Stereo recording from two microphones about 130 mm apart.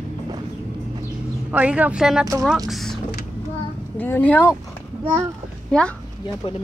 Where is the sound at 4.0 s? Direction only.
15° left (ahead or behind).